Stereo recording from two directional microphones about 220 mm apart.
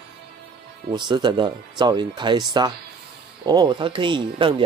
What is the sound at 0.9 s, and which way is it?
Speech, 20° right (ahead or behind).